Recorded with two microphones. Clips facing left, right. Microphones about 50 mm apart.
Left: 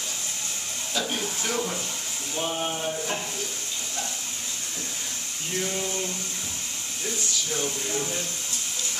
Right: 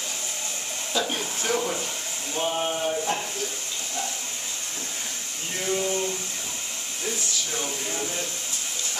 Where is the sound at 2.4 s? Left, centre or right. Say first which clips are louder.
Right 3 dB; centre.